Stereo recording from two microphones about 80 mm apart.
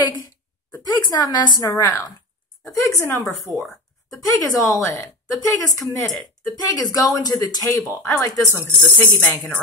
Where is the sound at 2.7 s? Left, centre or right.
Left.